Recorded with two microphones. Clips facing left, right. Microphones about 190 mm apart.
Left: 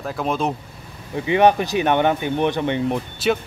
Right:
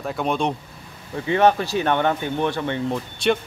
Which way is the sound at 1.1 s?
15° left (ahead or behind).